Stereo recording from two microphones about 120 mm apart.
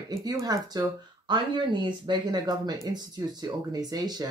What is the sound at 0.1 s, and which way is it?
Speech, 30° right (ahead or behind).